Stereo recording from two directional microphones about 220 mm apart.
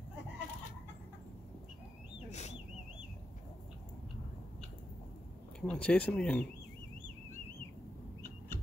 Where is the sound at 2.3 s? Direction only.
30° left (ahead or behind).